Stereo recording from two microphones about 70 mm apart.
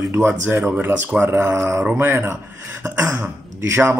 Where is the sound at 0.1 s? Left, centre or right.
Right.